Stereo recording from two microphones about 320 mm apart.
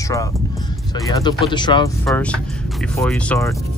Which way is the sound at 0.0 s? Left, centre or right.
Centre.